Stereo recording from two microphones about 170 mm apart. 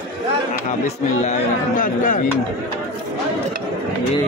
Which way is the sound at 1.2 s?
50° left (ahead or behind).